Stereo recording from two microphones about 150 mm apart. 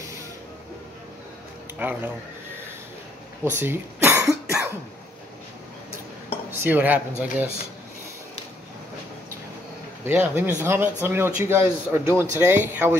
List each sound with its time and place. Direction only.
1.8 s a man's voice: 10° right (ahead or behind)
3.4 s cough: 15° right (ahead or behind)
6.5 s a man's voice: 15° right (ahead or behind)
10.0 s a man's voice: 15° right (ahead or behind)